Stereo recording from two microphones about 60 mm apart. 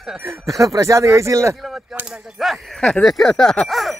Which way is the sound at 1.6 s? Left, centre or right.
Centre.